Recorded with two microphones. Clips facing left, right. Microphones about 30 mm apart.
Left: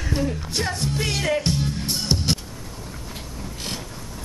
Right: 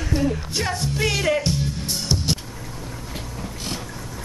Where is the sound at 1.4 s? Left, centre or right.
Left.